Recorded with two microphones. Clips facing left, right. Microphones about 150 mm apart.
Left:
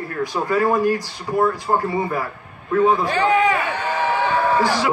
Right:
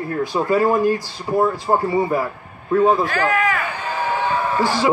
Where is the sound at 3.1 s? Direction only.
30° left (ahead or behind).